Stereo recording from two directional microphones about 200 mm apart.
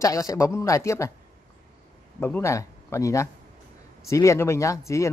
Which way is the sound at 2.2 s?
10° left (ahead or behind).